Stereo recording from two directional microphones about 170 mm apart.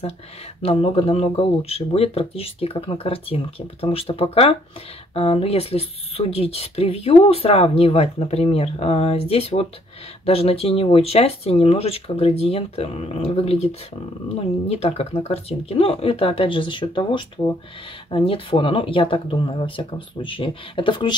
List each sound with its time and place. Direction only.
0.6 s speech: 35° left (ahead or behind)